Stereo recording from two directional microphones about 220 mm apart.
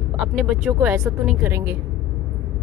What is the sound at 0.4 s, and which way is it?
Speech, 5° right (ahead or behind).